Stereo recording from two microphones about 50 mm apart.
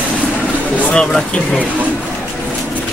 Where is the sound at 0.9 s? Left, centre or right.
Centre.